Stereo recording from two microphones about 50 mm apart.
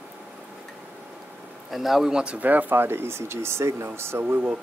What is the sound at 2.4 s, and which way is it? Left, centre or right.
Speech, right.